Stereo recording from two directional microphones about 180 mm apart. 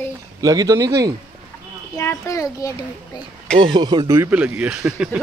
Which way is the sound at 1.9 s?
15° left (ahead or behind).